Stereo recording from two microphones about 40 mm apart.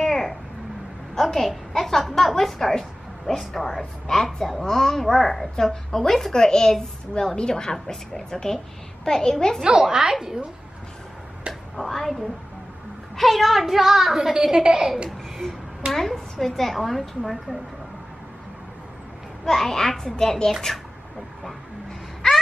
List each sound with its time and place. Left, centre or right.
0.0 s a sound: centre
1.2 s a woman's voice: centre
9.6 s a woman's voice: centre
11.7 s a woman's voice: centre
15.9 s a woman's voice: centre
19.4 s a woman's voice: centre
22.2 s a sound: centre